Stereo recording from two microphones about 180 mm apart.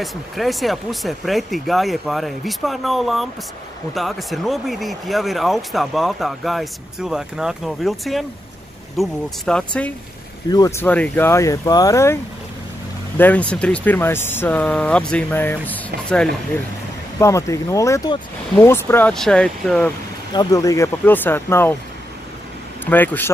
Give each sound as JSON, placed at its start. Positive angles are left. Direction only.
{"t": 0.0, "sound": "speech", "side_deg": 0}
{"t": 10.5, "sound": "speech", "side_deg": 20}
{"t": 13.2, "sound": "speech", "side_deg": 10}
{"t": 20.3, "sound": "speech", "side_deg": 20}
{"t": 22.8, "sound": "speech", "side_deg": 10}